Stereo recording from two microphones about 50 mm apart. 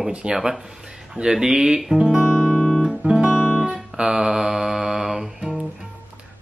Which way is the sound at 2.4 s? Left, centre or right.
Left.